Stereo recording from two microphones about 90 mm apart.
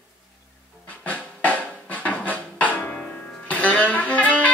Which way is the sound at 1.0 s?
15° left (ahead or behind).